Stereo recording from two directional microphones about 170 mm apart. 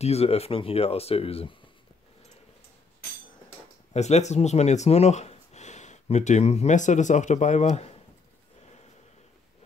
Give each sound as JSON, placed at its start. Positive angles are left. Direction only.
{"t": 0.0, "sound": "speech", "side_deg": 35}
{"t": 3.9, "sound": "speech", "side_deg": 40}